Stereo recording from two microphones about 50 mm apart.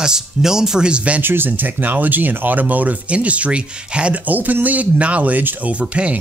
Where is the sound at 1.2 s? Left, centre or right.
Right.